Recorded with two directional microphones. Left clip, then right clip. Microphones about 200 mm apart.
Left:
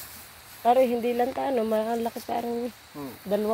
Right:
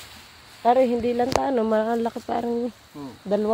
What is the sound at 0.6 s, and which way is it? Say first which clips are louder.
Speech: right 2 dB; 20° right (ahead or behind).